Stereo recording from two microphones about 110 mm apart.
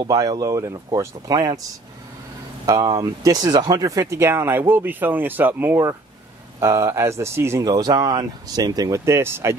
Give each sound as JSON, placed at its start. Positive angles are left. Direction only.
{"t": 0.1, "sound": "speech", "side_deg": -35}
{"t": 2.6, "sound": "speech", "side_deg": -35}
{"t": 4.2, "sound": "speech", "side_deg": -20}